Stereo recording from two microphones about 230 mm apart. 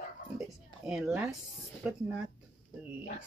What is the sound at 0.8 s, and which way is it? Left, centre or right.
Speech, centre.